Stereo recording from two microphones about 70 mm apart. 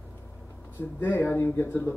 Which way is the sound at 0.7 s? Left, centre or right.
Left.